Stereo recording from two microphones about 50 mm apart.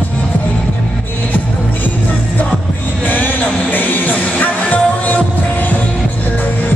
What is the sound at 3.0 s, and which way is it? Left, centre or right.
Music, left.